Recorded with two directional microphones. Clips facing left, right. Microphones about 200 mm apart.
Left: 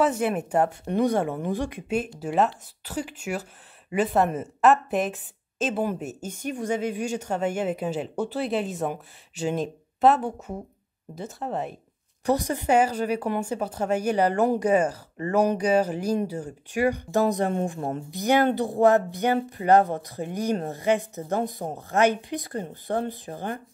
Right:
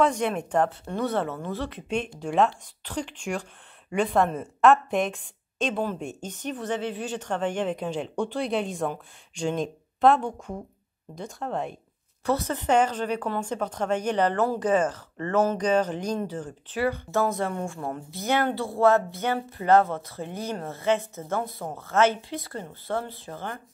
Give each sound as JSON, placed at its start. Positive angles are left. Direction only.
{"t": 0.0, "sound": "a woman's voice", "side_deg": 5}
{"t": 12.3, "sound": "speech", "side_deg": 15}